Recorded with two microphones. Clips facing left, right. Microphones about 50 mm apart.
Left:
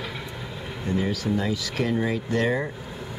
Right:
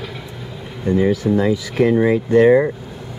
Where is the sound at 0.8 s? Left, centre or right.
Right.